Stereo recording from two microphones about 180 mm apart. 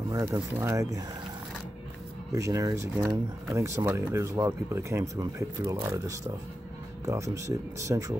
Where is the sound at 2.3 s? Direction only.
20° right (ahead or behind).